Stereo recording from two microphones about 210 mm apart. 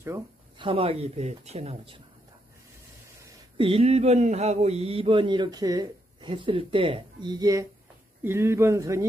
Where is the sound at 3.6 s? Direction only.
30° right (ahead or behind).